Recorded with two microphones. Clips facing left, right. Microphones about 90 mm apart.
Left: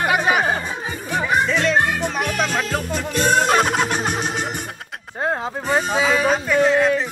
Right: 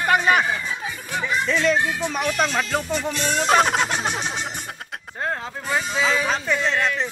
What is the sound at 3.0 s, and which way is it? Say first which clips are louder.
Music: left 5 dB; 50° left (ahead or behind).